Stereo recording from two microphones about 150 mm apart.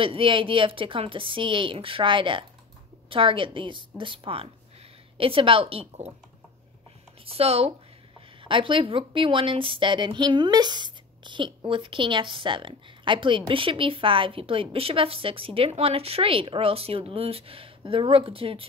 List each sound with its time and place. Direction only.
0.0 s a woman's voice: 35° right (ahead or behind)
7.2 s a woman's voice: 40° right (ahead or behind)